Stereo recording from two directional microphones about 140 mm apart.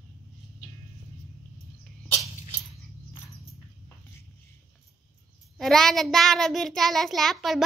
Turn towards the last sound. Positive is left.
turn(degrees=0)  # may be behind; listen again after turning